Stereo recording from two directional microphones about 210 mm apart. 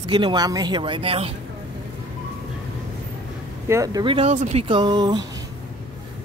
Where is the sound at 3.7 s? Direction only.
15° right (ahead or behind).